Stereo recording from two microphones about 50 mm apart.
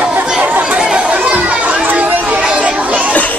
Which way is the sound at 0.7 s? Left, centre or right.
Centre.